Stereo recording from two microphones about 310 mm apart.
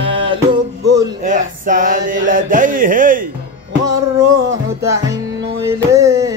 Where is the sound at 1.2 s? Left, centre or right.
Right.